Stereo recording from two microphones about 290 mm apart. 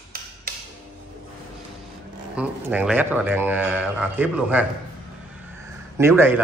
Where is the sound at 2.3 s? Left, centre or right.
Centre.